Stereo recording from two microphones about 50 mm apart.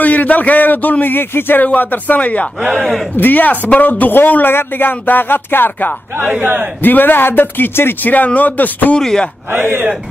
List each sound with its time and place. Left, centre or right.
0.0 s a man's voice: left
6.4 s a man's voice: right
6.8 s speech: left
8.0 s a man's voice: left
9.0 s speech: centre
9.5 s speech: right